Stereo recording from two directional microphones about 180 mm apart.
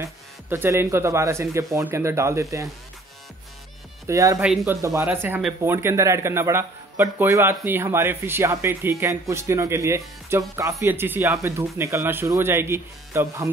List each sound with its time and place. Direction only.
0.0 s speech: 15° right (ahead or behind)
4.1 s speech: 15° right (ahead or behind)
4.5 s a man's voice: 5° right (ahead or behind)